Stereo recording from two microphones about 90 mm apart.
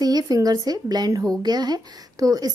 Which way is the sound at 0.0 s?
45° right (ahead or behind).